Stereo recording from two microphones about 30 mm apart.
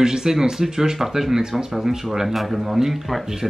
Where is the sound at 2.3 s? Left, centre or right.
Centre.